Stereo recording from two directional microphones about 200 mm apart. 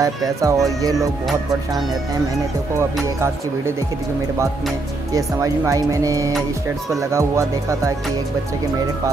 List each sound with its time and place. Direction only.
0.0 s speech: 15° right (ahead or behind)
5.1 s speech: 15° right (ahead or behind)